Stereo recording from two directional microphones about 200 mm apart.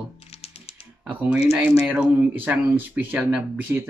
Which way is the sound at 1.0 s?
5° right (ahead or behind).